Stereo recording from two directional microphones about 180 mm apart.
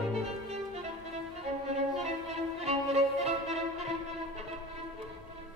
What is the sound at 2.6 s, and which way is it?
Violin, 35° right (ahead or behind).